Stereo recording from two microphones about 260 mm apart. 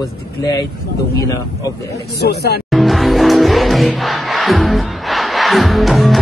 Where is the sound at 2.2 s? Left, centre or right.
Left.